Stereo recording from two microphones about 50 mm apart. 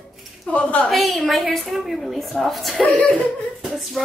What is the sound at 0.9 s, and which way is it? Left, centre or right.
A woman's voice, centre.